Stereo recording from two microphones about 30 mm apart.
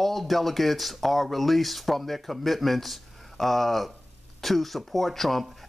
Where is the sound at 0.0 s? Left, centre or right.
Centre.